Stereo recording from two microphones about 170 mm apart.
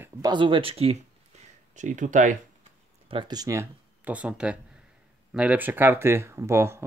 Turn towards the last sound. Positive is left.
turn(degrees=-15)  # may be behind; listen again after turning